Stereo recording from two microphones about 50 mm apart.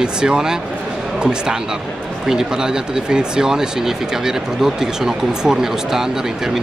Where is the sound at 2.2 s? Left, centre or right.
Centre.